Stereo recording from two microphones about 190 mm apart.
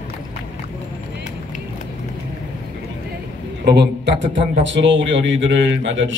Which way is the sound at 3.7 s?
60° right (ahead or behind).